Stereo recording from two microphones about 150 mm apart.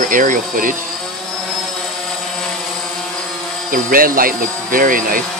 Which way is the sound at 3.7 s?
70° right (ahead or behind).